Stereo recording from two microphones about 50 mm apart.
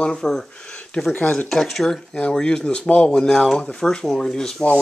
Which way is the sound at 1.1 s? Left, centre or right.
Left.